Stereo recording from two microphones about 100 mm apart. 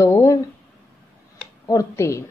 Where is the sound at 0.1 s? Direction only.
30° left (ahead or behind).